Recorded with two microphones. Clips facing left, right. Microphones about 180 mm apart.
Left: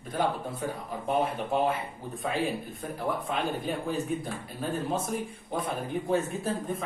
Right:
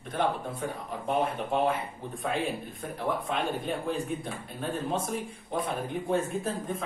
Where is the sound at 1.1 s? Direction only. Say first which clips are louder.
Left 1 dB; centre (ahead or behind).